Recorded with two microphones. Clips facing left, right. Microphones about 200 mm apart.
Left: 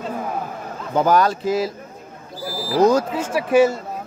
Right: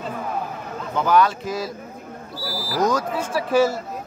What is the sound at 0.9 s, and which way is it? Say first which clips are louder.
Speech: left 2 dB; 40° left (ahead or behind).